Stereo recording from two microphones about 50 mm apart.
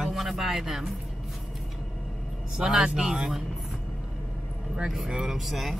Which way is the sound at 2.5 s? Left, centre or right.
Centre.